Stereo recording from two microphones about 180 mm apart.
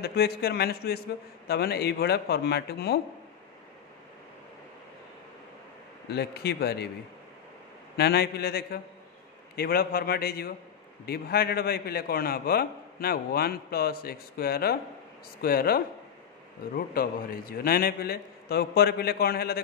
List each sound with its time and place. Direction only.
0.0 s a man's voice: 60° left (ahead or behind)
6.0 s a man's voice: 65° left (ahead or behind)
8.0 s a man's voice: 60° left (ahead or behind)